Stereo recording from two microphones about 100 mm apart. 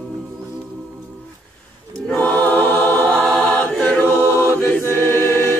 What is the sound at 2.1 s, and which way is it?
Choir, 15° left (ahead or behind).